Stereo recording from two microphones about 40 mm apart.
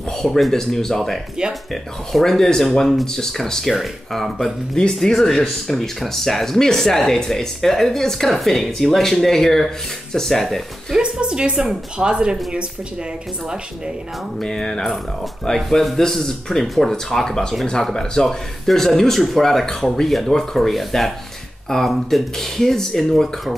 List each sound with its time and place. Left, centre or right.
0.2 s speech: centre
4.7 s speech: centre
10.4 s speech: centre
11.0 s a woman's voice: right
14.4 s speech: centre